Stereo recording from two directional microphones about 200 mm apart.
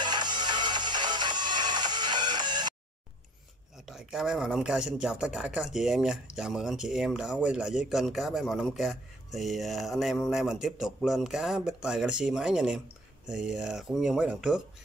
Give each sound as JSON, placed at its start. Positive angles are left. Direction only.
{"t": 0.0, "sound": "music", "side_deg": -20}
{"t": 3.8, "sound": "speech", "side_deg": 0}